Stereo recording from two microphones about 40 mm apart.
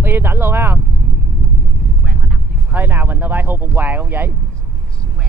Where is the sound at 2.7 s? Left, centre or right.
Right.